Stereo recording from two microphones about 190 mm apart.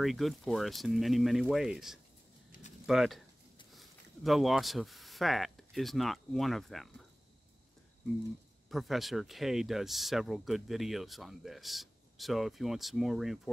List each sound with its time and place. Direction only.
0.0 s speech: centre (ahead or behind)
8.6 s speech: centre (ahead or behind)